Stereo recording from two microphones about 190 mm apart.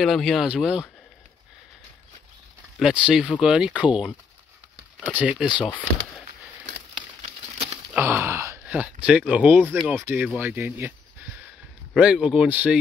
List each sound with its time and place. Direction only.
0.0 s speech: centre (ahead or behind)
2.8 s speech: 5° right (ahead or behind)
7.2 s a sound: 35° right (ahead or behind)
7.9 s speech: 10° right (ahead or behind)
11.9 s speech: 5° right (ahead or behind)